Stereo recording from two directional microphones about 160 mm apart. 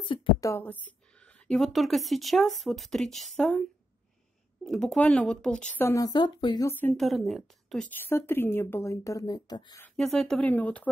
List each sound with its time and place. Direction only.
0.0 s a woman's voice: 30° left (ahead or behind)
0.4 s speech: 15° left (ahead or behind)
4.6 s speech: 5° left (ahead or behind)
5.8 s speech: 20° left (ahead or behind)
6.7 s speech: 10° left (ahead or behind)
7.0 s speech: centre (ahead or behind)
7.9 s speech: 15° left (ahead or behind)
9.8 s speech: 5° left (ahead or behind)